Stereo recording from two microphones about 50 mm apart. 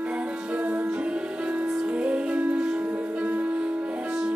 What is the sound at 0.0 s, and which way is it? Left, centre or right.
Music, right.